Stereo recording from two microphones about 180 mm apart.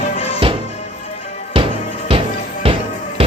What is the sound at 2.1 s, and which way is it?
Music, 30° right (ahead or behind).